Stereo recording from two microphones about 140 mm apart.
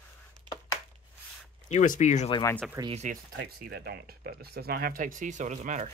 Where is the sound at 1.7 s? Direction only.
55° left (ahead or behind).